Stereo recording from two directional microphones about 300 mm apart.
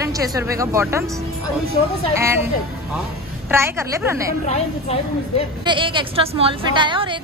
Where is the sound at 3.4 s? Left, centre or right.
Centre.